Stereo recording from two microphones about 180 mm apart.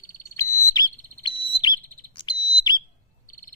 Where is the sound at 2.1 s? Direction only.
25° left (ahead or behind).